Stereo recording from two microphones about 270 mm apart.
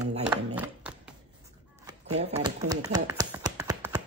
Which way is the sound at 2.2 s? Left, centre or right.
Centre.